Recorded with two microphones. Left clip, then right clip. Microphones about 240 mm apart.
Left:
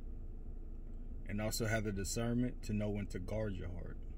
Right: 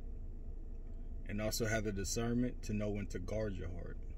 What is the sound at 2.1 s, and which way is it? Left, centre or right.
Speech, left.